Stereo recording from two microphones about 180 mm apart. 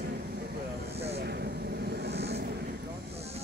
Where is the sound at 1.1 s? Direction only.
65° right (ahead or behind).